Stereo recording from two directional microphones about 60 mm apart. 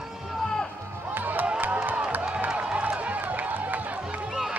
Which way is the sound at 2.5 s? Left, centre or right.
Centre.